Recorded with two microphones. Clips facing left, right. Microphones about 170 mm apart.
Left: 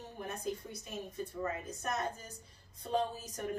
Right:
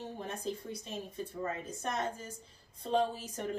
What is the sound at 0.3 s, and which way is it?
A woman's voice, 30° right (ahead or behind).